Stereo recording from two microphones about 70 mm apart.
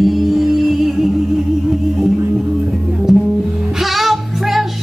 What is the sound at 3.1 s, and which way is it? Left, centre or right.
Music, centre.